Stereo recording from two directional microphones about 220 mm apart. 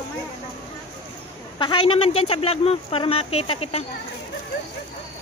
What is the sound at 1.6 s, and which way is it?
A woman's voice, 20° left (ahead or behind).